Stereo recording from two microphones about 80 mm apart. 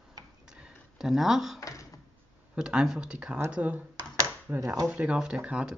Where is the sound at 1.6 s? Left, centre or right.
Left.